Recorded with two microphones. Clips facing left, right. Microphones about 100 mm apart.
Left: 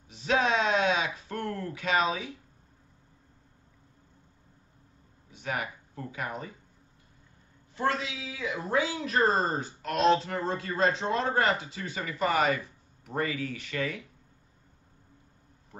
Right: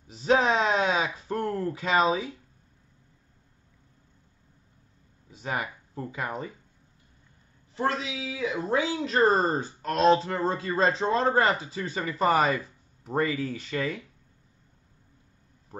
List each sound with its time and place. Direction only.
0.1 s a sound: 35° right (ahead or behind)
5.3 s speech: 30° right (ahead or behind)
7.7 s speech: 25° right (ahead or behind)